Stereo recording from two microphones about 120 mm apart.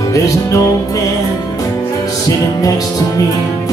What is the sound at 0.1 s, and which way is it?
Music, 30° left (ahead or behind).